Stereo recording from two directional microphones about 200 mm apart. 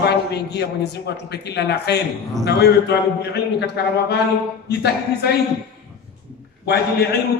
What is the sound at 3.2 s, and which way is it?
A man's voice, 55° left (ahead or behind).